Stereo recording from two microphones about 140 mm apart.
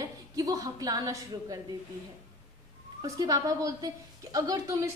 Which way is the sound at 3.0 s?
25° right (ahead or behind).